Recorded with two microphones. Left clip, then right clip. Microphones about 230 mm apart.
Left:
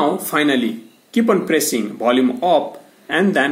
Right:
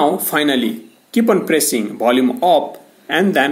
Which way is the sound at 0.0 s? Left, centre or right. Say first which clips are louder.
Right 2 dB; centre.